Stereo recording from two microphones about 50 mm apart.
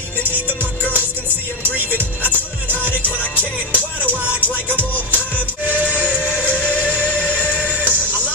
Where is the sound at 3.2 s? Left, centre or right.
Left.